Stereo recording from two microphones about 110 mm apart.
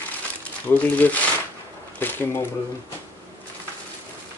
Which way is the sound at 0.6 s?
15° left (ahead or behind).